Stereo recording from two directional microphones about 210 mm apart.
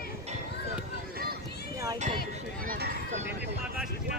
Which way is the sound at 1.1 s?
45° right (ahead or behind).